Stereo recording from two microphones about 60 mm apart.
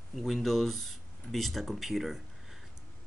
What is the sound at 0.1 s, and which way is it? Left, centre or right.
Speech, centre.